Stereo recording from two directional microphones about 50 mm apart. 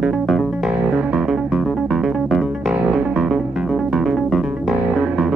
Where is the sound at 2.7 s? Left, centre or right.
Right.